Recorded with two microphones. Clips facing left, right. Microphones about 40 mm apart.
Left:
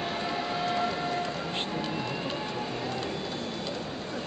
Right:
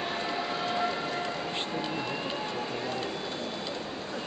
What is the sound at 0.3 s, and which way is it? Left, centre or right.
Train, centre.